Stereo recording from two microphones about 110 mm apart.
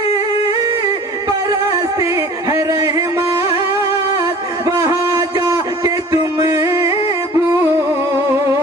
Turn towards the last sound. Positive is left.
turn(degrees=-25)  # may be behind; listen again after turning